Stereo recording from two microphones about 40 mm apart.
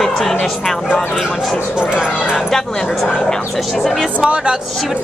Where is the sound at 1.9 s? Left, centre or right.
Right.